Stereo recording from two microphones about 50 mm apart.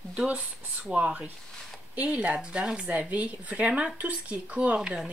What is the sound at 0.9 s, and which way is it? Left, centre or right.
Speech, right.